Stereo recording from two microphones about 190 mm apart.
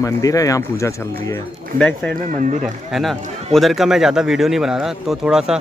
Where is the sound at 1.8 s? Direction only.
5° left (ahead or behind).